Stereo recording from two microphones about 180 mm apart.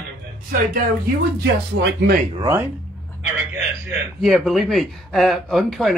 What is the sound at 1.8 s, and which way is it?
Speech, 70° right (ahead or behind).